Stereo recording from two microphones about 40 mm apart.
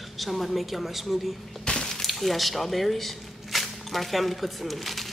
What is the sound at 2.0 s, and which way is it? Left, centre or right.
Speech, centre.